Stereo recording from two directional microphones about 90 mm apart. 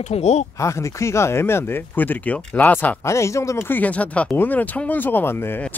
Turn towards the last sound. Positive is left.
turn(degrees=20)  # may be behind; listen again after turning